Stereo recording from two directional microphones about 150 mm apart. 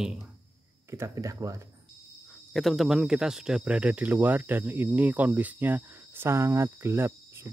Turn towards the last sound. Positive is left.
turn(degrees=-15)  # may be behind; listen again after turning